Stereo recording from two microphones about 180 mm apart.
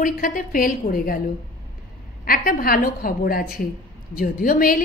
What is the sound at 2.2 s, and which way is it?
A woman's voice, 55° left (ahead or behind).